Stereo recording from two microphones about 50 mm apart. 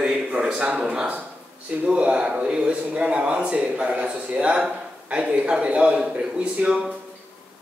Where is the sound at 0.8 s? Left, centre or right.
Centre.